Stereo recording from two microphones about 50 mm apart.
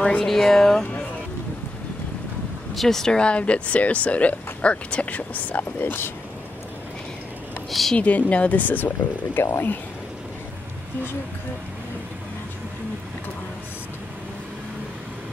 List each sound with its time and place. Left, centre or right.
0.0 s speech: centre
0.3 s speech: centre
2.7 s speech: centre; by 6.1 s left
8.0 s speech: left